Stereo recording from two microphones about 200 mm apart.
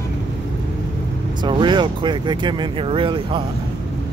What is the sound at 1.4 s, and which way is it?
Speech, 25° right (ahead or behind).